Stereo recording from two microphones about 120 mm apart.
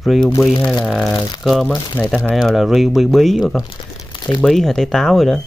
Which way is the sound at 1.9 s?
10° left (ahead or behind).